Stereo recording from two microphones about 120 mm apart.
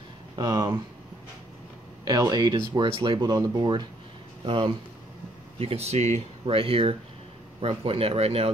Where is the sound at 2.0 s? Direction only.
35° right (ahead or behind).